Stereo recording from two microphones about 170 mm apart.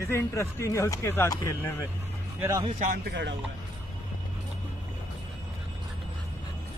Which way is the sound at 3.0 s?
90° right.